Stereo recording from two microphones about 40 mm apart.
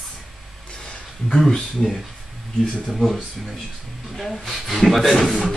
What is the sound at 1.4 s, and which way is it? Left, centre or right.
Speech, centre.